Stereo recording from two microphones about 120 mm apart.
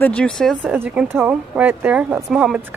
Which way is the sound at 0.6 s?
15° right (ahead or behind).